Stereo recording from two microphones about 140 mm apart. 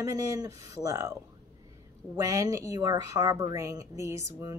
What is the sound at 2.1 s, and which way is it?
Speech, 20° right (ahead or behind).